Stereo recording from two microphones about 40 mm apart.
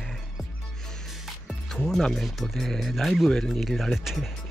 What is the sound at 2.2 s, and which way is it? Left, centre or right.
Speech, centre.